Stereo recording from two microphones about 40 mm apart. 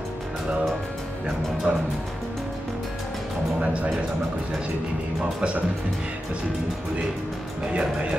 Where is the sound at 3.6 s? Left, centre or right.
Right.